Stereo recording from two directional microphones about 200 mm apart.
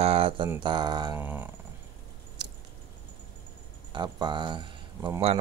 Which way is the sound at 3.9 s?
25° right (ahead or behind).